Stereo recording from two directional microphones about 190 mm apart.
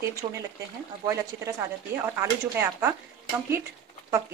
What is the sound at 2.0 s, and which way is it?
Speech, 10° right (ahead or behind).